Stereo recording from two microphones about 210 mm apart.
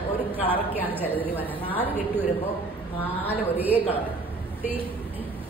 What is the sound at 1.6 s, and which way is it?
Speech, 10° left (ahead or behind).